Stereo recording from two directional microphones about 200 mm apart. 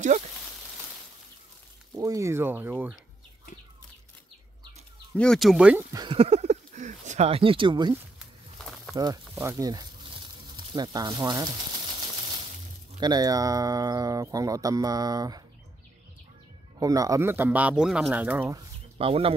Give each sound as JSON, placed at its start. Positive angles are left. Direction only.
{"t": 2.0, "sound": "speech", "side_deg": -15}
{"t": 5.1, "sound": "speech", "side_deg": 5}
{"t": 5.9, "sound": "speech", "side_deg": -25}
{"t": 8.9, "sound": "speech", "side_deg": -20}
{"t": 9.4, "sound": "a sound", "side_deg": -15}
{"t": 13.0, "sound": "speech", "side_deg": -20}
{"t": 16.8, "sound": "speech", "side_deg": -15}
{"t": 18.9, "sound": "speech", "side_deg": -30}